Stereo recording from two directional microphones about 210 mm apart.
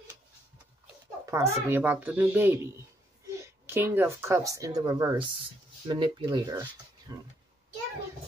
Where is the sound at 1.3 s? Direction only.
15° right (ahead or behind).